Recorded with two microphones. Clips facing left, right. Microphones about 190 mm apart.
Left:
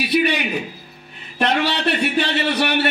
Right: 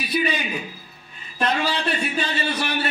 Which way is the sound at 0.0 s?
75° left (ahead or behind).